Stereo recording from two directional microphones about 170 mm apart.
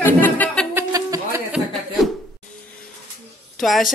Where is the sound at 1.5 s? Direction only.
Centre (ahead or behind).